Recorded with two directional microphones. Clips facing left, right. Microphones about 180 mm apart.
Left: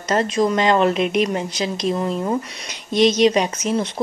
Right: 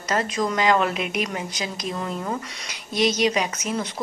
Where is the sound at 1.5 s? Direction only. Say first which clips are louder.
Left 7 dB; 15° right (ahead or behind).